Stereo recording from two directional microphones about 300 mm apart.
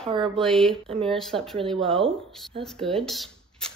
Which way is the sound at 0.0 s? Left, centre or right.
Centre.